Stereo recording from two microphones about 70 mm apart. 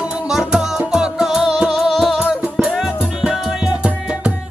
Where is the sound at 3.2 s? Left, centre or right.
Centre.